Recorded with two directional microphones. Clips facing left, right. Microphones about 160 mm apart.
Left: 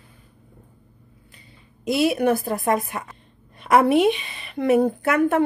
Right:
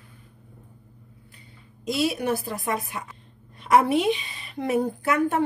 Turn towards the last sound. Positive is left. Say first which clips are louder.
# left 4 dB
turn(degrees=65)  # may be behind; listen again after turning